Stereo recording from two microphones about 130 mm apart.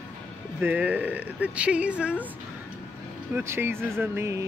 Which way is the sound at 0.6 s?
10° right (ahead or behind).